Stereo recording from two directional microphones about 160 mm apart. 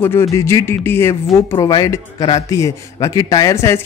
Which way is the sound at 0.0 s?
15° left (ahead or behind).